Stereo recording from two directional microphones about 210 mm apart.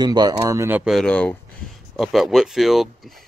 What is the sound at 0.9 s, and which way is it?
Speech, 5° left (ahead or behind).